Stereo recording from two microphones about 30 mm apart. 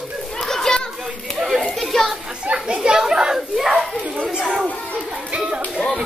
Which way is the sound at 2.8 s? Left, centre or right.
Centre.